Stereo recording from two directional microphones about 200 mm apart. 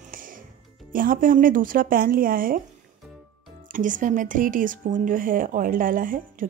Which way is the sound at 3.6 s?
40° right (ahead or behind).